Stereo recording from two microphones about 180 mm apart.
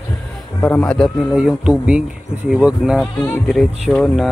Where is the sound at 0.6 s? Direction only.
5° left (ahead or behind).